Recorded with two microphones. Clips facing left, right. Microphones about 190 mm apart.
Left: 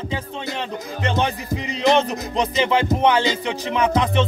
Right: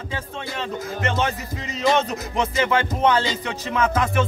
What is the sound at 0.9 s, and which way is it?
Music, 15° left (ahead or behind).